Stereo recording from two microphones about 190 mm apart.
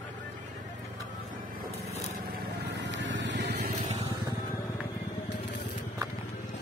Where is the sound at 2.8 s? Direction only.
70° right (ahead or behind).